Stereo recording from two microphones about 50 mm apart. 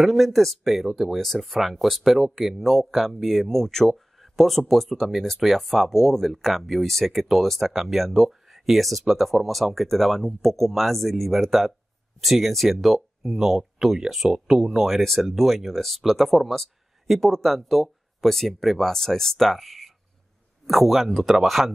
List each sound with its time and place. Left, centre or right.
0.0 s speech: centre